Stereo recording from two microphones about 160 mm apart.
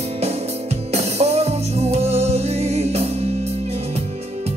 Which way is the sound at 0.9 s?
40° right (ahead or behind).